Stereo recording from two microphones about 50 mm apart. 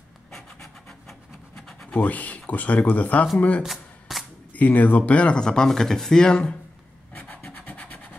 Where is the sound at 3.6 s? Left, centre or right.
Centre.